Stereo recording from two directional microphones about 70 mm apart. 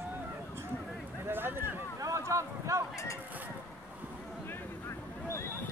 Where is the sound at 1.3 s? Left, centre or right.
Right.